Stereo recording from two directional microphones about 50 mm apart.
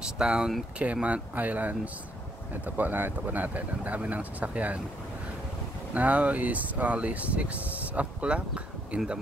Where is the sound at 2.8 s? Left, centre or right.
Right.